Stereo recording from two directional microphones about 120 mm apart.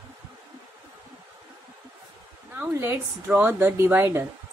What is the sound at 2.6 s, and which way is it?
Speech, 20° right (ahead or behind).